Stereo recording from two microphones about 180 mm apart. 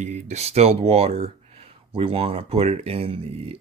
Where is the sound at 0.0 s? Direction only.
40° right (ahead or behind).